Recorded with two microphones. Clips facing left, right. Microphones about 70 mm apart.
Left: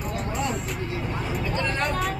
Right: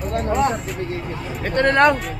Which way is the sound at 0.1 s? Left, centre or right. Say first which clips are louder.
Right 10 dB; right.